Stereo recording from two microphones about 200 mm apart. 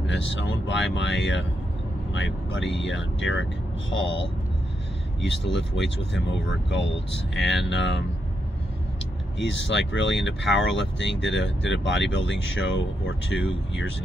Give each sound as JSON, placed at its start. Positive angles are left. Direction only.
{"t": 0.0, "sound": "speech", "side_deg": 65}
{"t": 5.2, "sound": "speech", "side_deg": 65}
{"t": 9.4, "sound": "speech", "side_deg": 65}